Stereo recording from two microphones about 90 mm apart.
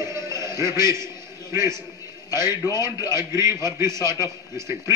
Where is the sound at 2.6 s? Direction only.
45° left (ahead or behind).